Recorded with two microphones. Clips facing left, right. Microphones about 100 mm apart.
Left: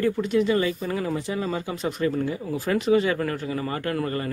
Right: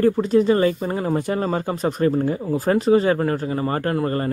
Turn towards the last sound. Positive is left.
turn(degrees=-35)  # may be behind; listen again after turning